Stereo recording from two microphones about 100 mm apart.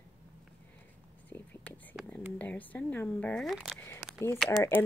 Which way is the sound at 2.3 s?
15° left (ahead or behind).